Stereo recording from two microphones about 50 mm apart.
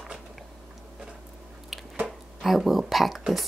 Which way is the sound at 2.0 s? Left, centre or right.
Right.